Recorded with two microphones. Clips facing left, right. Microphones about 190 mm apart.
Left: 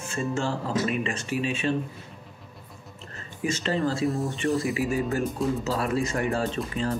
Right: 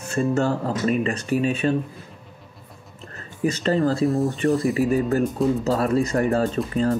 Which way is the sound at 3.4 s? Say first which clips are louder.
Right 6 dB; 40° right (ahead or behind).